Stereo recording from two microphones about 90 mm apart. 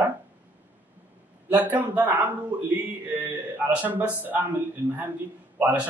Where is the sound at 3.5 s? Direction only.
20° right (ahead or behind).